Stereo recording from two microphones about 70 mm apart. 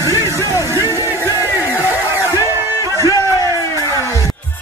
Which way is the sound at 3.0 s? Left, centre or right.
Left.